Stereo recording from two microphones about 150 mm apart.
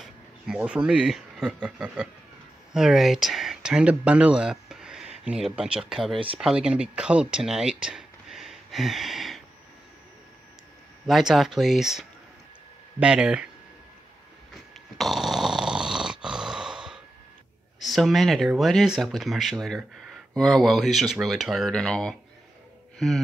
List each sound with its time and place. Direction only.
0.0 s speech: 5° right (ahead or behind)
6.1 s speech: 35° right (ahead or behind)
6.4 s speech: 5° right (ahead or behind)
11.1 s speech: centre (ahead or behind)
15.0 s snoring: centre (ahead or behind)
17.8 s speech: centre (ahead or behind)
22.9 s a sound: centre (ahead or behind)